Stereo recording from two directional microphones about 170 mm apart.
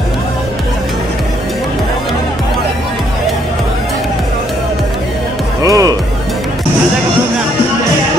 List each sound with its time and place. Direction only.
5.6 s music: 20° right (ahead or behind)